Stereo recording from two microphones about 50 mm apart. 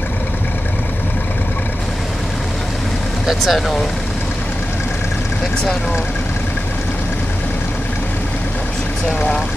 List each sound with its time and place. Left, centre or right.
3.3 s speech: centre